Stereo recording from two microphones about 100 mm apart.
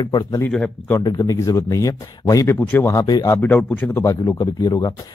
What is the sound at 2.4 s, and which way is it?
Speech, 20° left (ahead or behind).